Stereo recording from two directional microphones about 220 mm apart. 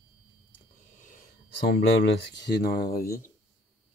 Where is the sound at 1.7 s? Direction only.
50° left (ahead or behind).